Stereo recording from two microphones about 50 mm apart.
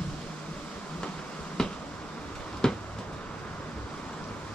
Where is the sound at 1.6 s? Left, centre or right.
Centre.